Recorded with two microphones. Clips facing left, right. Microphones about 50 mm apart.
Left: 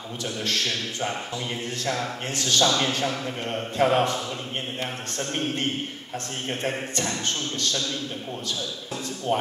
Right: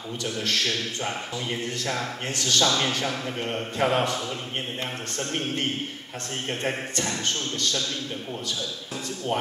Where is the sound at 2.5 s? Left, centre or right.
Centre.